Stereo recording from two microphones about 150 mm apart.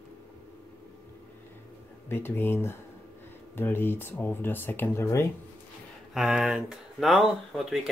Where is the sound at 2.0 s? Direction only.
15° left (ahead or behind).